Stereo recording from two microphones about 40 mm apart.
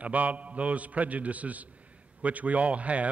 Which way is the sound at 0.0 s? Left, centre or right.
Right.